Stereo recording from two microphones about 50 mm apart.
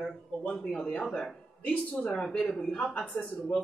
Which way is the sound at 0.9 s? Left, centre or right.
Left.